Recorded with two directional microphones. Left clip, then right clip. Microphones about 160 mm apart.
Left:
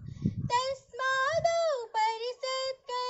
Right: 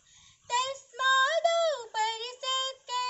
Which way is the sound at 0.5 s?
35° left (ahead or behind).